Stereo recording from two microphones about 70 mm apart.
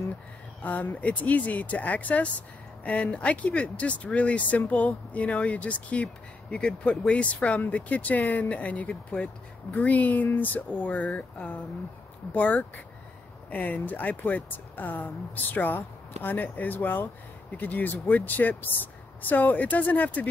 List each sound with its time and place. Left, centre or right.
0.6 s speech: left